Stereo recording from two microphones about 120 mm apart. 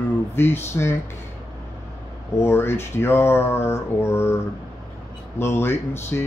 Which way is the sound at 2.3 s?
20° left (ahead or behind).